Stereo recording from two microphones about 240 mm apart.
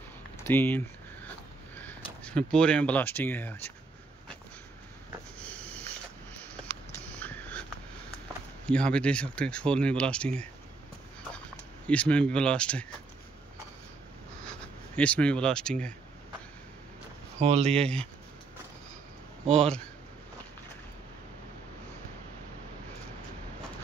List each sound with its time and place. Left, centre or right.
0.4 s a sound: centre
1.8 s speech: centre
5.4 s sniff: centre
7.1 s a sound: centre
8.6 s speech: centre
11.9 s speech: centre
14.4 s speech: centre
17.4 s speech: right
19.5 s speech: centre